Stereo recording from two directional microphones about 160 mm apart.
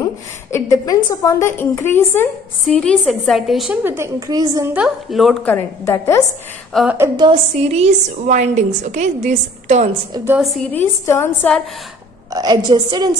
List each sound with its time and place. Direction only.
0.5 s a woman's voice: 20° left (ahead or behind); by 3.7 s centre (ahead or behind)
3.8 s a woman's voice: 15° right (ahead or behind)
4.7 s a woman's voice: centre (ahead or behind)
5.9 s a woman's voice: 20° left (ahead or behind)
6.7 s a woman's voice: centre (ahead or behind)
7.2 s a woman's voice: 35° right (ahead or behind)
10.1 s a woman's voice: 25° right (ahead or behind)
10.7 s a woman's voice: 15° left (ahead or behind)
12.3 s a woman's voice: 25° right (ahead or behind)